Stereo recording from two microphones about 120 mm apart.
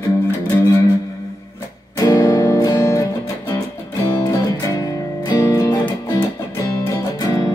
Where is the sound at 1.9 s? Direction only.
30° left (ahead or behind).